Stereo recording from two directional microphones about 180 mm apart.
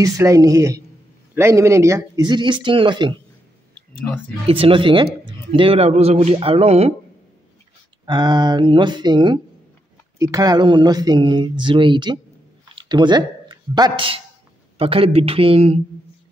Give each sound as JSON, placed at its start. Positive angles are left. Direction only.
{"t": 0.0, "sound": "a woman's voice", "side_deg": -20}
{"t": 4.5, "sound": "speech", "side_deg": -30}
{"t": 8.0, "sound": "speech", "side_deg": -25}